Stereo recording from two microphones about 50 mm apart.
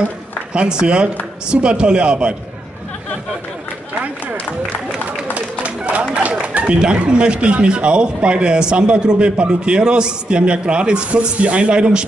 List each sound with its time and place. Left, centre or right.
0.5 s speech: centre
5.3 s a sound: right
6.4 s speech: right